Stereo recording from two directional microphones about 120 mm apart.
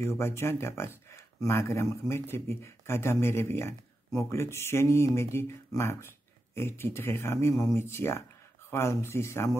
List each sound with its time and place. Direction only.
0.0 s speech: 20° left (ahead or behind)